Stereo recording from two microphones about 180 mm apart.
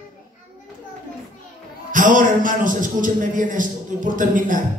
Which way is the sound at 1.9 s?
45° right (ahead or behind).